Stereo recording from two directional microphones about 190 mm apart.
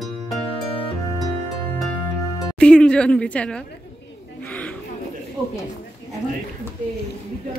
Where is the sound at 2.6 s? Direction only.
5° left (ahead or behind).